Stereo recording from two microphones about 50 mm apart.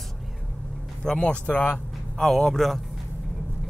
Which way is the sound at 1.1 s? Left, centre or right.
Left.